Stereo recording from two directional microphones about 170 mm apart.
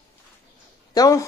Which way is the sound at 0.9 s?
20° left (ahead or behind).